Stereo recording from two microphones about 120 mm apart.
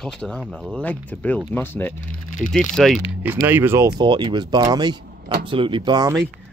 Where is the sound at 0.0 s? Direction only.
5° left (ahead or behind).